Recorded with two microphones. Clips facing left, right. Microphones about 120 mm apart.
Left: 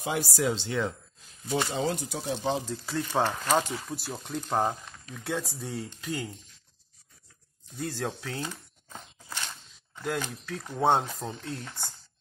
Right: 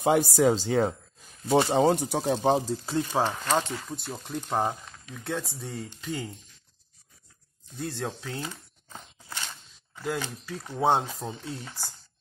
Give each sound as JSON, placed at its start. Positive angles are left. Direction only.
{"t": 0.0, "sound": "speech", "side_deg": -50}
{"t": 1.7, "sound": "speech", "side_deg": -70}
{"t": 2.4, "sound": "speech", "side_deg": -45}
{"t": 2.7, "sound": "speech", "side_deg": -25}
{"t": 3.0, "sound": "speech", "side_deg": -10}
{"t": 3.4, "sound": "speech", "side_deg": 10}
{"t": 7.7, "sound": "speech", "side_deg": 0}
{"t": 9.5, "sound": "a sound", "side_deg": 0}
{"t": 10.3, "sound": "speech", "side_deg": 0}